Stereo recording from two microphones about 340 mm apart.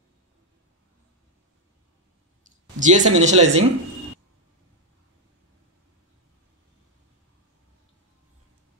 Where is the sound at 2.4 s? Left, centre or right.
Right.